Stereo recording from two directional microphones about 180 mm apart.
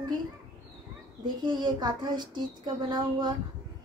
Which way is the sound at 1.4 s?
25° right (ahead or behind).